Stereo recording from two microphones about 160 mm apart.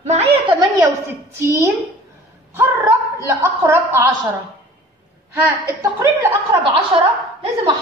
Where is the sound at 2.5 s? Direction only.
15° right (ahead or behind).